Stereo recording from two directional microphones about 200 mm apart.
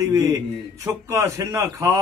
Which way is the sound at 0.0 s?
20° right (ahead or behind).